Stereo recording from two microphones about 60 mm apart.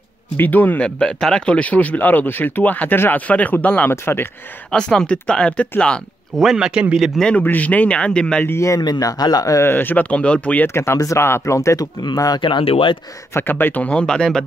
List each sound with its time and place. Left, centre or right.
0.4 s speech: left
0.8 s speech: centre
3.9 s speech: left
4.7 s speech: centre
6.3 s speech: centre
7.3 s speech: left
8.5 s speech: left
9.6 s speech: left
10.0 s speech: centre
10.7 s speech: left
13.3 s speech: left
13.8 s speech: centre